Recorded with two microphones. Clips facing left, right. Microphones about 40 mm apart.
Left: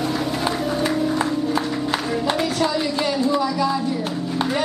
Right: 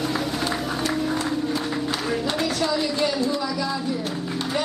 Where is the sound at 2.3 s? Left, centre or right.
Centre.